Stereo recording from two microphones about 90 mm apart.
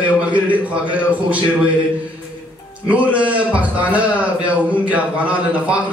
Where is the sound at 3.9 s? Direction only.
15° right (ahead or behind).